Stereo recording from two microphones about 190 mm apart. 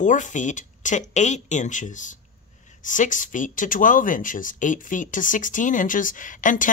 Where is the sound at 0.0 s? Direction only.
40° left (ahead or behind).